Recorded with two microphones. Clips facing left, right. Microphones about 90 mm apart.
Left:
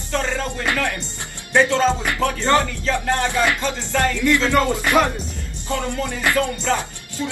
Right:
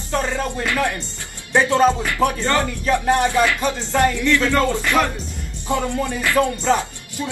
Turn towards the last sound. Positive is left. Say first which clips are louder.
# right 2 dB
turn(degrees=-20)  # may be behind; listen again after turning